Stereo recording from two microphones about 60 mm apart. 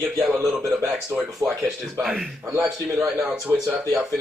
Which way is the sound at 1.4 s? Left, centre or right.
Right.